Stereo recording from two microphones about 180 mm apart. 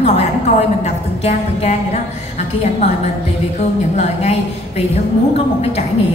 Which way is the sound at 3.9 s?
35° left (ahead or behind).